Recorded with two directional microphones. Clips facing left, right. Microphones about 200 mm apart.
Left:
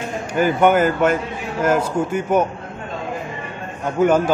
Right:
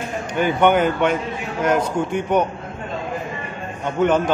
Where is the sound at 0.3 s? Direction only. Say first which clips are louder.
Left 1 dB; 5° left (ahead or behind).